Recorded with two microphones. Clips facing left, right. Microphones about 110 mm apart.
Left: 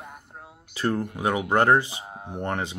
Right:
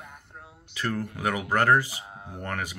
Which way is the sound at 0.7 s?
25° left (ahead or behind).